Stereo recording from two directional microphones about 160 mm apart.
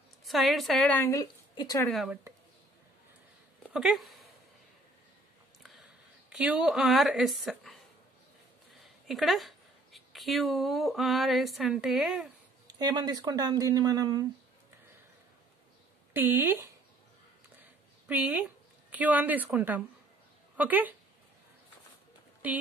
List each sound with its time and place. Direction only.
0.2 s speech: centre (ahead or behind)
1.0 s a woman's voice: 25° left (ahead or behind)
1.9 s speech: centre (ahead or behind)
3.7 s speech: centre (ahead or behind)
6.3 s speech: 5° right (ahead or behind)
9.0 s speech: centre (ahead or behind)
12.6 s speech: 25° right (ahead or behind)
16.1 s speech: 10° right (ahead or behind)
17.6 s a sound: 10° right (ahead or behind)
20.5 s a woman's voice: 10° right (ahead or behind)
22.4 s speech: 10° right (ahead or behind)